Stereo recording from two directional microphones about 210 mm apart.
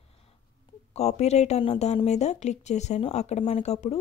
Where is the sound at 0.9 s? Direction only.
30° left (ahead or behind).